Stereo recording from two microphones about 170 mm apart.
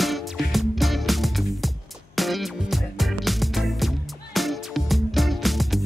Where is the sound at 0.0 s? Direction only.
Centre (ahead or behind).